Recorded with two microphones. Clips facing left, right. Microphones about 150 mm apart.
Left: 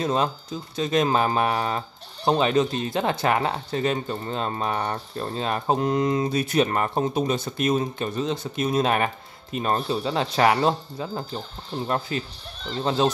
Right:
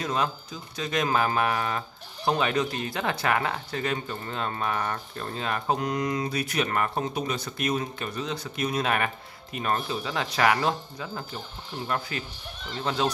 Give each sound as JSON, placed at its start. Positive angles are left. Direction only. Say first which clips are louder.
{"t": 0.0, "sound": "speech", "louder": "left 4 dB", "side_deg": 30}